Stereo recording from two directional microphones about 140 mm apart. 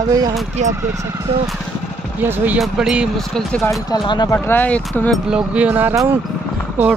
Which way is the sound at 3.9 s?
30° left (ahead or behind).